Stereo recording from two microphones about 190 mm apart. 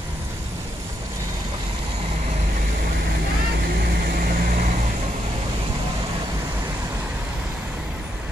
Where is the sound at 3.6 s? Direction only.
55° right (ahead or behind).